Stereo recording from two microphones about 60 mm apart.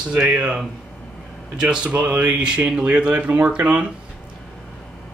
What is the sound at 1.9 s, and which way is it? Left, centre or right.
Speech, right.